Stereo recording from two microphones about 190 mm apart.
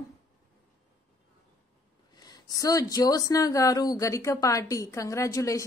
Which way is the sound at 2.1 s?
20° left (ahead or behind).